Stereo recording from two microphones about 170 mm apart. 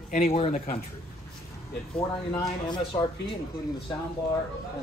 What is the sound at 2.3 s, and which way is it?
Speech, 25° left (ahead or behind).